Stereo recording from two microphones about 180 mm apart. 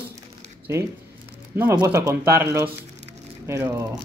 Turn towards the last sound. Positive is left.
turn(degrees=-15)  # may be behind; listen again after turning